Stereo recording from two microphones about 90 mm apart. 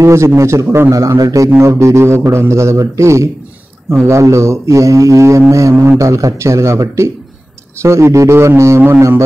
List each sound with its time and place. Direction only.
0.0 s speech: 35° right (ahead or behind)
0.4 s mantra: 35° right (ahead or behind)